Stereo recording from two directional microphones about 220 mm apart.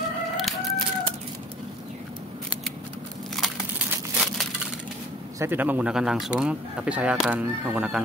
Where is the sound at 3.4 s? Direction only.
Centre (ahead or behind).